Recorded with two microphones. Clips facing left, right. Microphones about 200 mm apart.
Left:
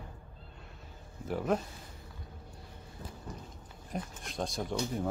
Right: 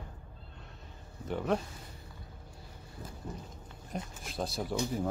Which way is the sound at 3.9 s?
Centre (ahead or behind).